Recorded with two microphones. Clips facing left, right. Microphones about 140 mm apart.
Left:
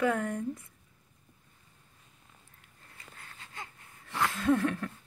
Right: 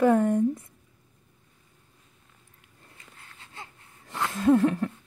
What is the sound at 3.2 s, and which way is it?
Wheeze, 25° right (ahead or behind).